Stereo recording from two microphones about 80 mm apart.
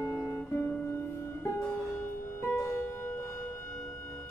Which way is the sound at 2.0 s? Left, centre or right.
Left.